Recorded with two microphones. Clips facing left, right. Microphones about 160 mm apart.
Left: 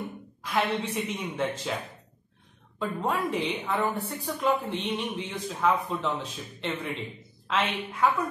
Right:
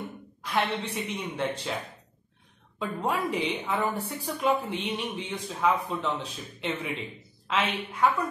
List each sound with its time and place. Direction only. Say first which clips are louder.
0.4 s a woman's voice: left 1 dB; centre (ahead or behind)
2.8 s a woman's voice: even; centre (ahead or behind)